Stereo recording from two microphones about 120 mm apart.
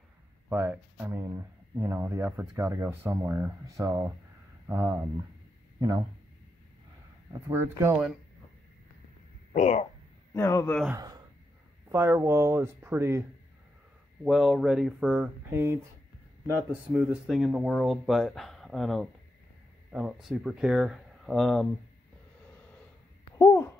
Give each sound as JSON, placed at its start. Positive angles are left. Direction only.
{"t": 0.5, "sound": "speech", "side_deg": -20}
{"t": 7.5, "sound": "speech", "side_deg": -20}
{"t": 9.5, "sound": "a sound", "side_deg": 70}
{"t": 10.3, "sound": "speech", "side_deg": 20}
{"t": 11.9, "sound": "speech", "side_deg": -20}
{"t": 14.2, "sound": "speech", "side_deg": 0}
{"t": 15.5, "sound": "speech", "side_deg": -20}
{"t": 16.7, "sound": "speech", "side_deg": -10}
{"t": 23.3, "sound": "a sound", "side_deg": 30}